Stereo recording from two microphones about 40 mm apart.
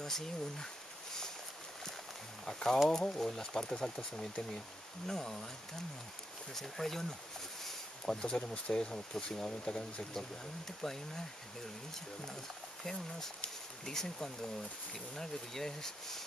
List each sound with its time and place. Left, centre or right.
0.0 s speech: centre
2.4 s speech: centre
6.5 s speech: centre
8.0 s speech: centre
10.8 s speech: centre
13.8 s speech: centre